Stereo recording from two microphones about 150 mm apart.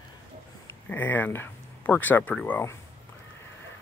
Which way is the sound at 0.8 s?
10° left (ahead or behind).